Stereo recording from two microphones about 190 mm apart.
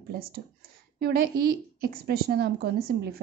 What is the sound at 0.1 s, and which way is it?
A woman's voice, 50° right (ahead or behind).